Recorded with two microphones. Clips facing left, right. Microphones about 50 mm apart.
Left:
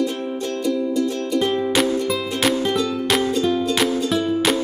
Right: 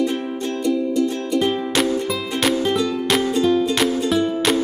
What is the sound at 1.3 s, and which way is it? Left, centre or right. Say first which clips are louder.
Music: left 2 dB; centre.